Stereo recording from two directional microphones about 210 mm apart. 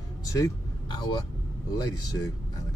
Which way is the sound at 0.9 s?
20° left (ahead or behind).